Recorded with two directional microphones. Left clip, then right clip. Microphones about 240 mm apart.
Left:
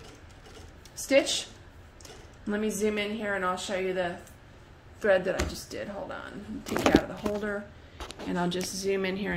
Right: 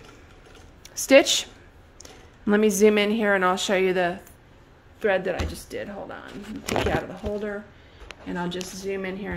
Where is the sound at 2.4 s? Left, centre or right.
Right.